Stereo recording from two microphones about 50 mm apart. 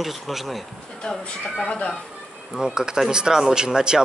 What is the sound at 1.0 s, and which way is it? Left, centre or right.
Speech, centre.